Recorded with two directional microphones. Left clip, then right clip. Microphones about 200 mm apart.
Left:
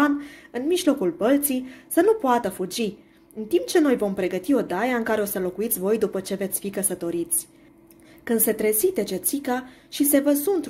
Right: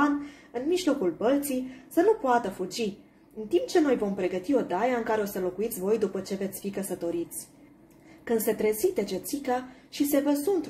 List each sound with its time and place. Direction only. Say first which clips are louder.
0.0 s speech: left 4 dB; 40° left (ahead or behind)
8.3 s speech: left 3 dB; 35° left (ahead or behind)